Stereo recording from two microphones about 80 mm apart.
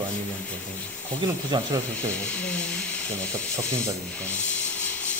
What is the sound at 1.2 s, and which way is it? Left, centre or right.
Speech, right.